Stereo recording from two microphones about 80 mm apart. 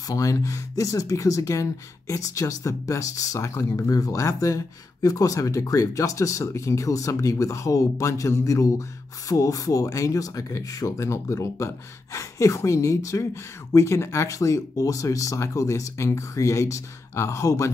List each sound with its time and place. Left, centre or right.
0.1 s speech: left